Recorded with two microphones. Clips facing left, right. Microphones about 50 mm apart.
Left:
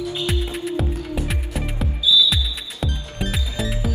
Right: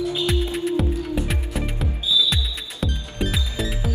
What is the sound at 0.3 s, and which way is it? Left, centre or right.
Music, centre.